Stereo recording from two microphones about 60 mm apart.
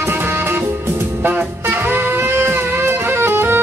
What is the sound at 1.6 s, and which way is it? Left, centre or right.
Music, right.